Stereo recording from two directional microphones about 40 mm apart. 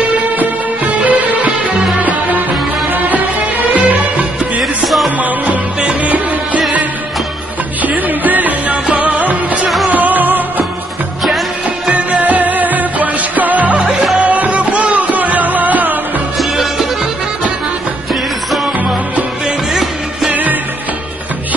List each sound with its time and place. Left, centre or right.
1.0 s music: right
4.6 s music: centre
5.9 s music: right
7.8 s music: right
11.2 s music: centre
11.9 s music: right
20.2 s music: right